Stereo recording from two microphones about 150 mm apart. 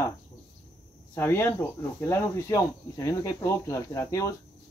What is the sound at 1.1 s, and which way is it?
Speech, 15° left (ahead or behind).